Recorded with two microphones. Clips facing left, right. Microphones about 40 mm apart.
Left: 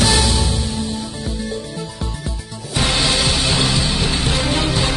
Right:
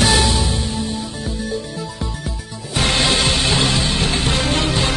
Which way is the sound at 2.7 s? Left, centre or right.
Centre.